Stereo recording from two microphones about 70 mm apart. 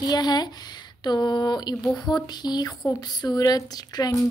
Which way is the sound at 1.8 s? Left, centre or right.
Centre.